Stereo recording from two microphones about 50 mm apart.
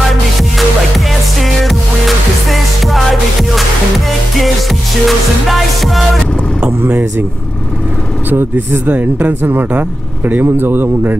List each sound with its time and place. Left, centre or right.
0.6 s music: centre
6.9 s vehicle: right
8.3 s speech: right